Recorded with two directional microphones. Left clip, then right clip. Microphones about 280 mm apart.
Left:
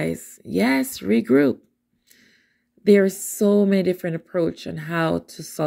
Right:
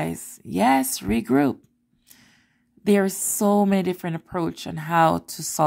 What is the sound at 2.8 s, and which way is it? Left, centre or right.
Speech, centre.